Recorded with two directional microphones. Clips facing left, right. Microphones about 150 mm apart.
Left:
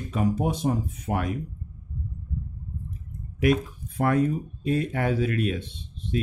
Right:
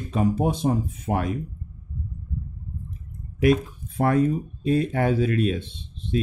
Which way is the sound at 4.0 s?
30° right (ahead or behind).